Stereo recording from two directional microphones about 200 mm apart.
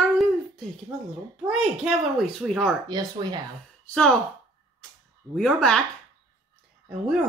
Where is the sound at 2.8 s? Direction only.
20° right (ahead or behind).